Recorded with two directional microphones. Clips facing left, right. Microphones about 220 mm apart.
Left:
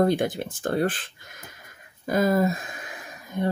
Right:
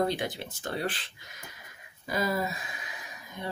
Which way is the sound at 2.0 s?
50° left (ahead or behind).